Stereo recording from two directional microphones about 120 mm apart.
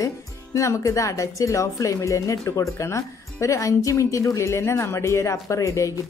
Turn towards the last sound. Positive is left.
turn(degrees=25)  # may be behind; listen again after turning